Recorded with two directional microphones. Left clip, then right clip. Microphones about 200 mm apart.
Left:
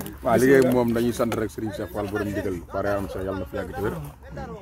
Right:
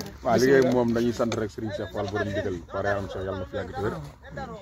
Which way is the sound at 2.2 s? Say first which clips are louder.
Even; 50° left (ahead or behind).